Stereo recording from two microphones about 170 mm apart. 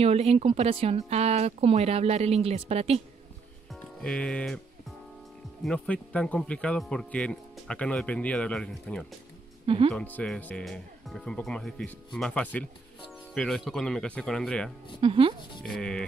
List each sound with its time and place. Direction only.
0.0 s speech: 35° right (ahead or behind)
4.0 s speech: 5° left (ahead or behind)
5.6 s speech: 5° left (ahead or behind)
9.7 s speech: 30° right (ahead or behind)
9.9 s speech: 5° left (ahead or behind)
15.0 s speech: 30° right (ahead or behind)
15.6 s speech: 5° left (ahead or behind)